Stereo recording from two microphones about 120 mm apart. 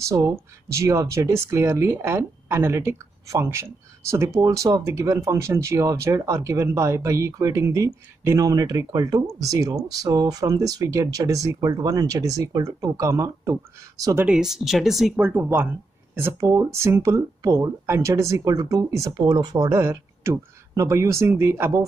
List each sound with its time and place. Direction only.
0.1 s speech: 25° right (ahead or behind)
14.2 s speech: 5° right (ahead or behind)
15.1 s speech: 15° right (ahead or behind)